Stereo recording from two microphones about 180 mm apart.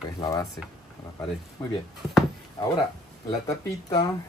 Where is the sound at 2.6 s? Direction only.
20° left (ahead or behind).